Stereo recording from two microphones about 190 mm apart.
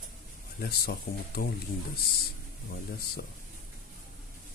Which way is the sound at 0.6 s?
55° left (ahead or behind).